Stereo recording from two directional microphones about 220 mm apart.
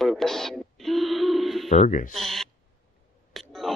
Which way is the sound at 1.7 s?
35° left (ahead or behind).